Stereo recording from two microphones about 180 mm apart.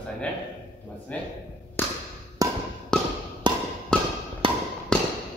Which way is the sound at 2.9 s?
5° left (ahead or behind).